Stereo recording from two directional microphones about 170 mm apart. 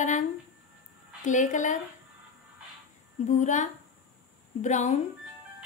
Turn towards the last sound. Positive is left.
turn(degrees=45)  # may be behind; listen again after turning